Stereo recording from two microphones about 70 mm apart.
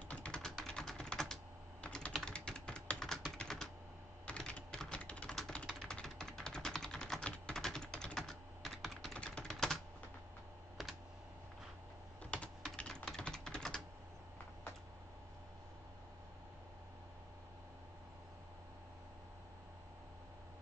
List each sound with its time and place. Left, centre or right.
0.1 s typing: centre
4.3 s typing: centre
12.2 s typing: centre